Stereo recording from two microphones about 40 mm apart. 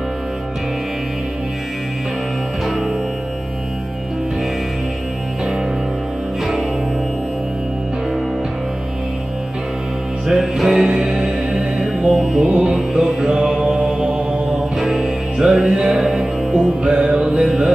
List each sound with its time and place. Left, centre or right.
2.6 s music: centre
10.2 s music: centre
13.8 s mantra: centre
14.8 s music: centre
15.3 s music: centre
16.8 s music: right